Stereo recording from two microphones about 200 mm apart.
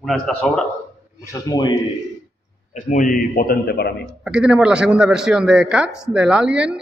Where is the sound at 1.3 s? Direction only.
20° left (ahead or behind).